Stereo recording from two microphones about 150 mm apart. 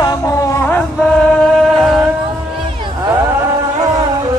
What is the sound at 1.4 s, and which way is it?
Music, centre (ahead or behind).